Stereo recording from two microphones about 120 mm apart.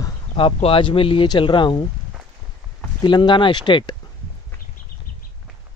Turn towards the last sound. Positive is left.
turn(degrees=40)  # may be behind; listen again after turning